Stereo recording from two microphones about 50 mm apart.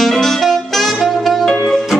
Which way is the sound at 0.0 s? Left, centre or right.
Centre.